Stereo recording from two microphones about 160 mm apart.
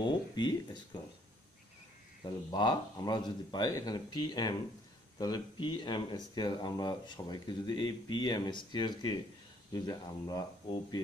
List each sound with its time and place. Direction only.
0.0 s speech: 25° left (ahead or behind)
2.5 s speech: 30° left (ahead or behind)